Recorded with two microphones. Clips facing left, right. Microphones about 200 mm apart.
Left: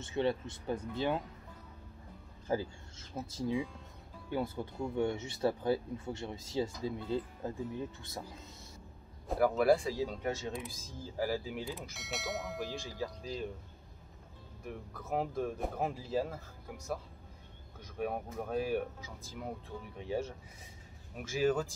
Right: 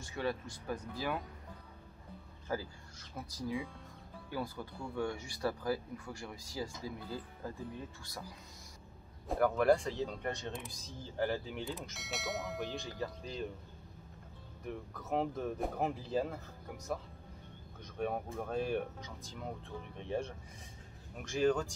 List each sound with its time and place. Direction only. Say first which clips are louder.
0.0 s speech: left 5 dB; 25° left (ahead or behind)
2.4 s speech: left 5 dB; 25° left (ahead or behind)
9.3 s speech: left 1 dB; 5° left (ahead or behind)
14.7 s speech: even; centre (ahead or behind)
17.9 s speech: even; 5° left (ahead or behind)